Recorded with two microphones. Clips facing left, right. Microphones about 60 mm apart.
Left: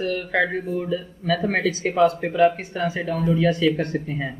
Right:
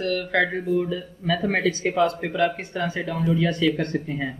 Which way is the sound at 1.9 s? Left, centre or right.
Centre.